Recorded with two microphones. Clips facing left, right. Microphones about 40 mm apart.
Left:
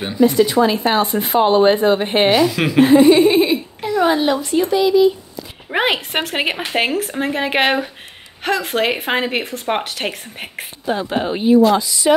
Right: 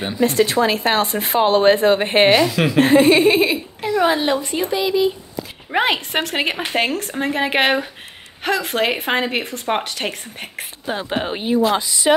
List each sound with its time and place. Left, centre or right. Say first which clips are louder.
0.2 s speech: left 3 dB; right
1.1 s speech: left 3 dB; right
1.5 s speech: even; right
2.3 s a woman's voice: even; centre
2.8 s speech: left 3 dB; right
3.3 s a woman's voice: left 2 dB; centre
4.2 s speech: left 2 dB; right
4.6 s speech: left 5 dB; centre
5.7 s a woman's voice: left 1 dB; centre
11.0 s speech: left 1 dB; right
11.8 s a woman's voice: left 1 dB; right